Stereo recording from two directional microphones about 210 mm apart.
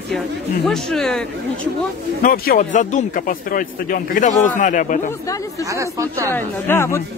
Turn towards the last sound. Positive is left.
turn(degrees=10)  # may be behind; listen again after turning